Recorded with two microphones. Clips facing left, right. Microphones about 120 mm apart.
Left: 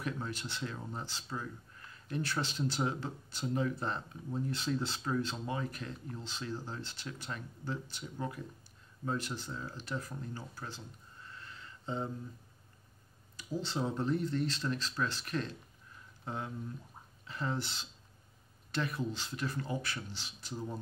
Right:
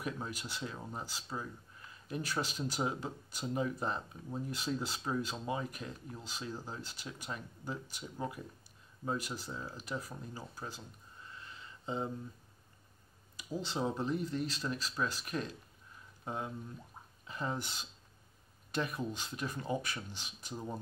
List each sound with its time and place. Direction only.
0.0 s speech: 10° right (ahead or behind)
11.3 s a sound: 15° right (ahead or behind)
13.4 s speech: 15° right (ahead or behind)